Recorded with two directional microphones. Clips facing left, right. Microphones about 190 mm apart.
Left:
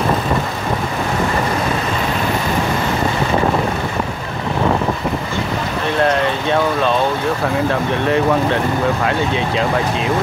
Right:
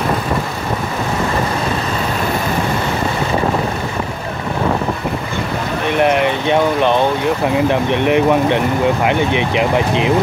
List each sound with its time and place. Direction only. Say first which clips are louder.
5.9 s speech: right 2 dB; 15° right (ahead or behind)